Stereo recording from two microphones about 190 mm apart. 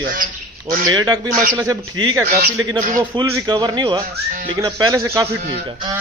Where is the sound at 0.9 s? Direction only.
20° right (ahead or behind).